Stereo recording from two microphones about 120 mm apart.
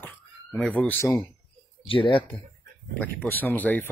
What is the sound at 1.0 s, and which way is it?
Speech, 25° left (ahead or behind).